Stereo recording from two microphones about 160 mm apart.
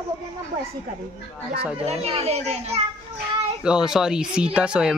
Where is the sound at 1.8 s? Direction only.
40° right (ahead or behind).